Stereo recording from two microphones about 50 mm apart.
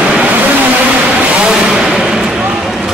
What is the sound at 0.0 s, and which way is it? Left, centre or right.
Vehicle, right.